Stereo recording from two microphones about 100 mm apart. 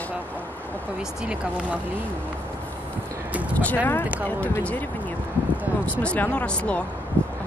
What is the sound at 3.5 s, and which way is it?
Speech, 15° left (ahead or behind).